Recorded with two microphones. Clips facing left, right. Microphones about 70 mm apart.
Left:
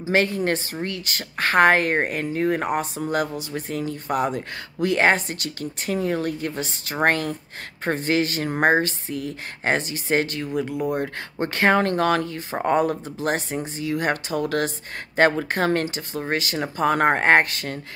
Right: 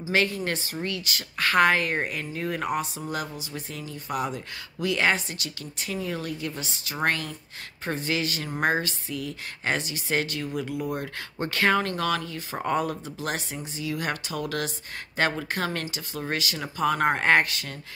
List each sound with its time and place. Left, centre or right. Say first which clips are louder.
0.1 s speech: left 5 dB; left